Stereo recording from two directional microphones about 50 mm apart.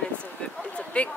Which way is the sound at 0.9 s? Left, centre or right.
Left.